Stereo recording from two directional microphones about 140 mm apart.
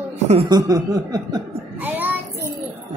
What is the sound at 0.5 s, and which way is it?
Chuckle, 25° right (ahead or behind).